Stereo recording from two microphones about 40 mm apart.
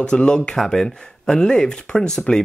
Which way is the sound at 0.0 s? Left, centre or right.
Left.